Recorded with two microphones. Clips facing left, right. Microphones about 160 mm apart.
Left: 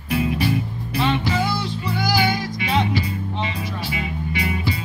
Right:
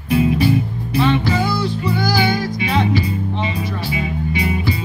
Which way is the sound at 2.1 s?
25° right (ahead or behind).